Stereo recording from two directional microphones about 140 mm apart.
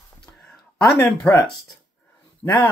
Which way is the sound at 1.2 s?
5° left (ahead or behind).